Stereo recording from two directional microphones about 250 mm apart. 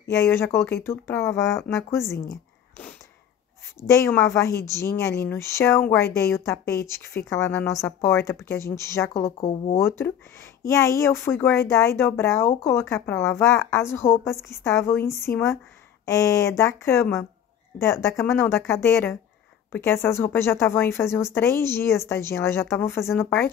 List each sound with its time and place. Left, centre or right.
0.1 s speech: centre
3.8 s speech: centre
9.4 s speech: left
9.8 s speech: centre